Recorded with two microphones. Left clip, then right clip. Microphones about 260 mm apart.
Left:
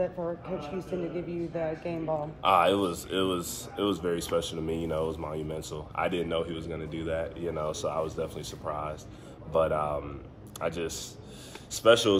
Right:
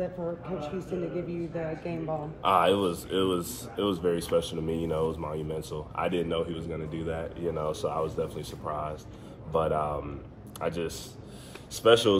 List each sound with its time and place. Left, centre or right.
0.8 s a man's voice: left
2.4 s speech: centre